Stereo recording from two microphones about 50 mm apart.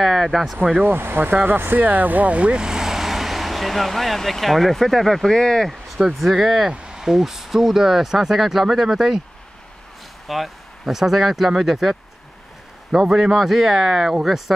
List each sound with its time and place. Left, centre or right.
0.0 s speech: centre
0.8 s speech: right; by 5.7 s centre
5.7 s a sound: centre
6.1 s speech: centre
6.7 s a sound: right
7.0 s speech: centre
10.2 s speech: centre